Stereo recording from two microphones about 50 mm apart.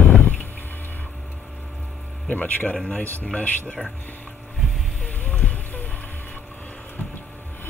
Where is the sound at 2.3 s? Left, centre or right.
Left.